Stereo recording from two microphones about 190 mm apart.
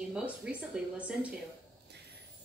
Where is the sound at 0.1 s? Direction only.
5° right (ahead or behind).